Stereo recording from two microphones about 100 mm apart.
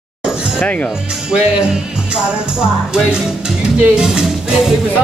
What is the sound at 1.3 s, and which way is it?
Speech, 10° right (ahead or behind).